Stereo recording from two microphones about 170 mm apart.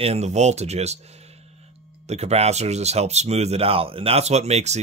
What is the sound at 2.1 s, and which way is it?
Speech, 40° right (ahead or behind).